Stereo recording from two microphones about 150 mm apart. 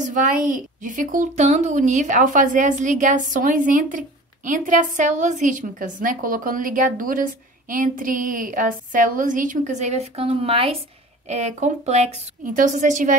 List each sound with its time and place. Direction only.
0.0 s a woman's voice: 60° right (ahead or behind); by 10.8 s 40° right (ahead or behind)
11.2 s a woman's voice: 50° right (ahead or behind)